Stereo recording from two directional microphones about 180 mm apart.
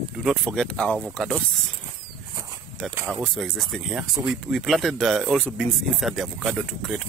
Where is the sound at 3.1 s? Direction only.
Centre (ahead or behind).